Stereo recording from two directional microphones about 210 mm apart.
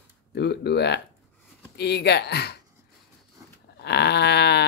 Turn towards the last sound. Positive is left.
turn(degrees=50)  # may be behind; listen again after turning